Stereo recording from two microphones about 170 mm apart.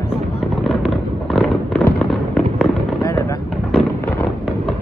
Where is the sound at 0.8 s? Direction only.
Centre (ahead or behind).